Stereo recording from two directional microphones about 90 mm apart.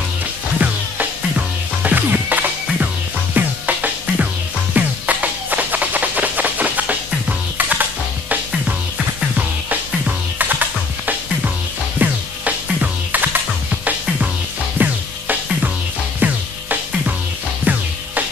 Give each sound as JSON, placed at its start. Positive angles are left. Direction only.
{"t": 0.6, "sound": "music", "side_deg": -15}
{"t": 9.4, "sound": "music", "side_deg": -20}
{"t": 14.8, "sound": "music", "side_deg": -20}